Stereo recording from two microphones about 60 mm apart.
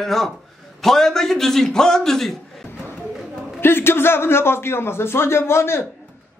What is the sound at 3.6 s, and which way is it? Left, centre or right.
A man's voice, left.